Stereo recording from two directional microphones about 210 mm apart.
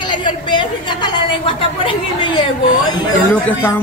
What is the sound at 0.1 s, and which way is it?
A woman's voice, 20° left (ahead or behind).